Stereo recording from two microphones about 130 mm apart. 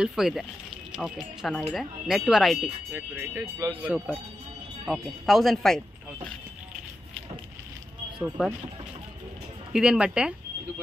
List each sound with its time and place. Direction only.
0.0 s speech: 5° right (ahead or behind)
2.9 s speech: 20° right (ahead or behind)
3.8 s speech: 5° right (ahead or behind)
8.2 s speech: 10° right (ahead or behind)
9.7 s speech: 5° right (ahead or behind)